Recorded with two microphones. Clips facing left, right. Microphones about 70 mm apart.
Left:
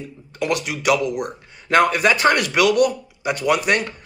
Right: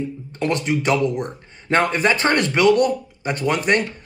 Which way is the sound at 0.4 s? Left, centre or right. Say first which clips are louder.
Right 2 dB; right.